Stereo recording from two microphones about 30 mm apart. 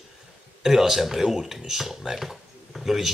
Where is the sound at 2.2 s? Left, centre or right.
Centre.